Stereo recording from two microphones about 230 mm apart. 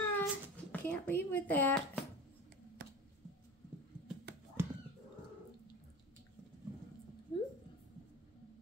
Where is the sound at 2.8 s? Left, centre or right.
Right.